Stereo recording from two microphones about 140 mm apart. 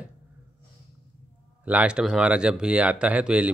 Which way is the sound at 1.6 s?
10° right (ahead or behind).